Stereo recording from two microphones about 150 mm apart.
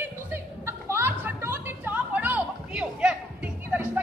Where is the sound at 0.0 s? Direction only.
15° right (ahead or behind).